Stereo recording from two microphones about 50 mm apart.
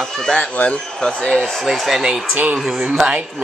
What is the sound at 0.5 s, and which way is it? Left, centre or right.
Speech, left.